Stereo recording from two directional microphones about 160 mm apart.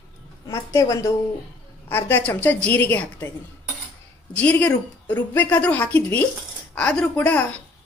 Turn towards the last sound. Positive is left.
turn(degrees=10)  # may be behind; listen again after turning